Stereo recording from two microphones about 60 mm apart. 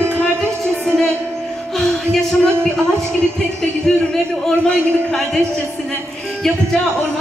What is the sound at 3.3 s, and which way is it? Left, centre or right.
A man's voice, centre.